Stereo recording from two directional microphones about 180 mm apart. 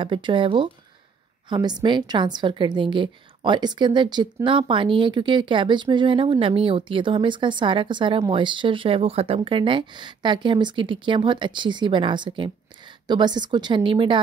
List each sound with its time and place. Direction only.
0.0 s a woman's voice: 30° right (ahead or behind)